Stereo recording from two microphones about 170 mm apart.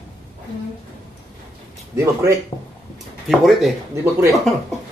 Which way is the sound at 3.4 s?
Centre (ahead or behind).